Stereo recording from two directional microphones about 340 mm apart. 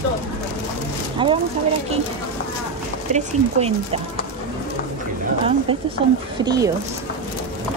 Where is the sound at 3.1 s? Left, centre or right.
Centre.